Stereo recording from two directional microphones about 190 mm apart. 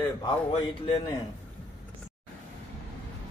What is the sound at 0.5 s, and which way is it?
Speech, 30° left (ahead or behind).